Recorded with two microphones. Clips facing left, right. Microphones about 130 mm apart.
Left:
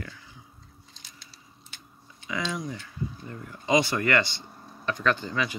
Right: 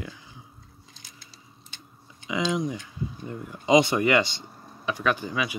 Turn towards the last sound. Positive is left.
turn(degrees=-10)  # may be behind; listen again after turning